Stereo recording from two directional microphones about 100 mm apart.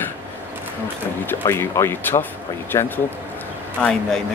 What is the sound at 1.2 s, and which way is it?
Snicker, 25° left (ahead or behind).